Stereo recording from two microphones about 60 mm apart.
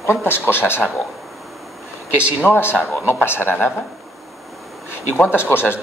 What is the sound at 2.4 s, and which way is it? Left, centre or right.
Speech, left.